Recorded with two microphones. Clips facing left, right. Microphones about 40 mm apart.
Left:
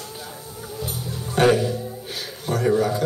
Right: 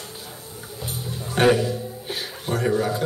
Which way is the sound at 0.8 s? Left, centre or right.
Right.